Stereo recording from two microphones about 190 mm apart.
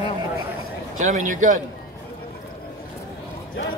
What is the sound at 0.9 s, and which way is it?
Speech, 40° right (ahead or behind).